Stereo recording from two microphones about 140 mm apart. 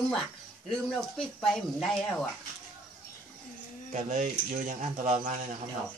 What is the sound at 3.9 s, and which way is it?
Speech, 65° right (ahead or behind).